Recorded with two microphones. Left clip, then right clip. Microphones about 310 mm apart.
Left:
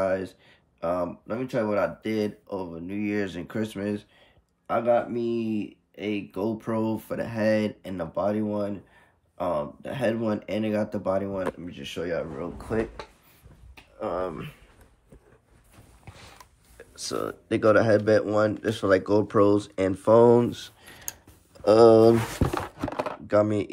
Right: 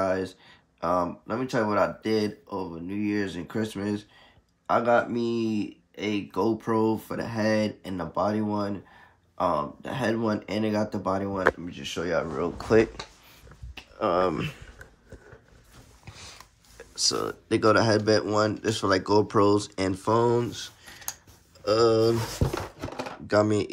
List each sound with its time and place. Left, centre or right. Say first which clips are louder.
0.0 s a sound: even; centre
0.7 s speech: right 2 dB; centre
13.9 s speech: right 6 dB; centre
16.7 s speech: right 5 dB; centre
23.2 s speech: even; centre